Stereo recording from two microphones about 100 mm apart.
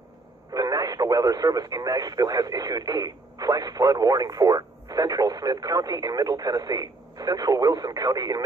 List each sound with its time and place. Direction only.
0.6 s speech: 40° right (ahead or behind)